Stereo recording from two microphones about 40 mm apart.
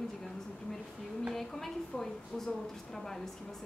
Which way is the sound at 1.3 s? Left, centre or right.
Centre.